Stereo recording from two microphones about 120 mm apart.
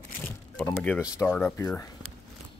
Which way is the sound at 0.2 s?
10° left (ahead or behind).